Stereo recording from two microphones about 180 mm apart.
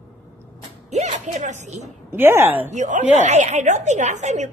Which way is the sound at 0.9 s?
40° right (ahead or behind).